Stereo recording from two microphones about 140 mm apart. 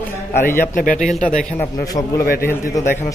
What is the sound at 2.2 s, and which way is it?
Speech, 90° left.